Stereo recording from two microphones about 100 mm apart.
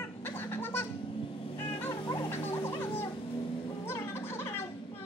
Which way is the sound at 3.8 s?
25° left (ahead or behind).